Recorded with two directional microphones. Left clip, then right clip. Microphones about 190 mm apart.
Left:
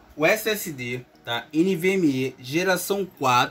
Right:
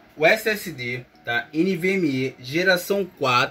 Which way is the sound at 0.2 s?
30° left (ahead or behind).